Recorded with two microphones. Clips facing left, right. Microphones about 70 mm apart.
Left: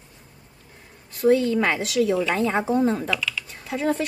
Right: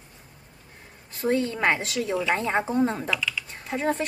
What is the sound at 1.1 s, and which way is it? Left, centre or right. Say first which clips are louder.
A woman's voice: left 6 dB; right.